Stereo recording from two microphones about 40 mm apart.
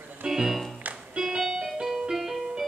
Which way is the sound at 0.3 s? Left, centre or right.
Centre.